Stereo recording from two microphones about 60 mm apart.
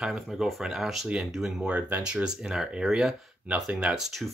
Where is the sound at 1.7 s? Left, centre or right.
Right; by 4.2 s centre.